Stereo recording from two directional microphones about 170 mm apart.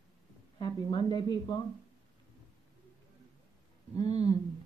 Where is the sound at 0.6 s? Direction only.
25° left (ahead or behind).